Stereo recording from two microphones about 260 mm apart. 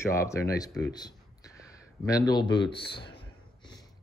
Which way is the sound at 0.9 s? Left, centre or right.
Centre.